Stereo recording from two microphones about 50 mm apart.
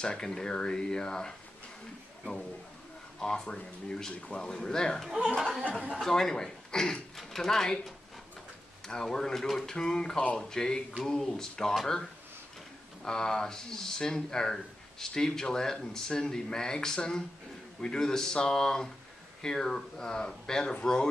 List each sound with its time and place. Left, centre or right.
0.0 s speech: centre
3.2 s speech: centre
8.8 s speech: centre
13.0 s speech: centre